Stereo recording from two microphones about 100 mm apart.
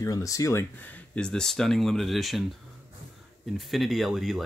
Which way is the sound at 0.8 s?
15° left (ahead or behind).